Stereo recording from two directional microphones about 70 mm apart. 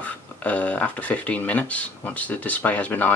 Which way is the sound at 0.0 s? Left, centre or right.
Left.